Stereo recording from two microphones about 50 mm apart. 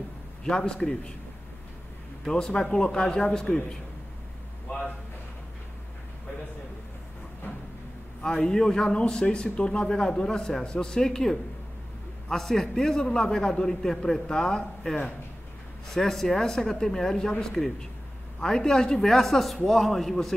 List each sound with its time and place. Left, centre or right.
0.4 s a man's voice: centre
2.2 s a man's voice: centre
7.5 s a sound: left
8.2 s a man's voice: centre